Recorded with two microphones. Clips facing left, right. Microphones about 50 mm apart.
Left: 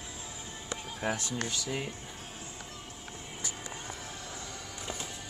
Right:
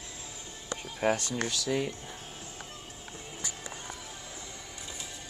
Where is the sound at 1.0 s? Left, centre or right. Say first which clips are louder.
Right 6 dB; right.